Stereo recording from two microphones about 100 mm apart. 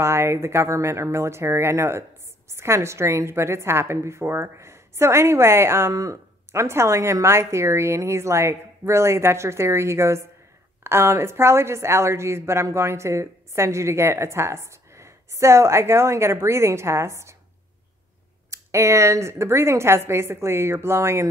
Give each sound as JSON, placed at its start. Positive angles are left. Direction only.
{"t": 0.0, "sound": "speech", "side_deg": -25}
{"t": 18.5, "sound": "speech", "side_deg": -30}